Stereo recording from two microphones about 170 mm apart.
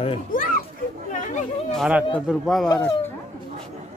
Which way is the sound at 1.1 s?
50° left (ahead or behind).